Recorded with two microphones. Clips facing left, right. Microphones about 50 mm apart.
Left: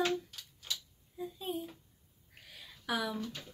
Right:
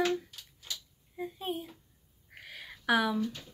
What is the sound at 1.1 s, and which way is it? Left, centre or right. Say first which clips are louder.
Speech: right 3 dB; right.